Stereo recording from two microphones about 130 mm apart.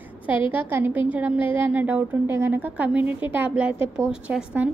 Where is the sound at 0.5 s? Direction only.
15° right (ahead or behind).